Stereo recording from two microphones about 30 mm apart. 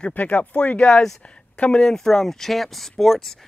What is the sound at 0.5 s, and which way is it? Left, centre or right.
Speech, left.